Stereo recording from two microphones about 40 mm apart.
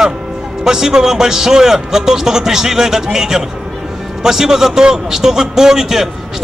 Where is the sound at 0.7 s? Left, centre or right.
Centre.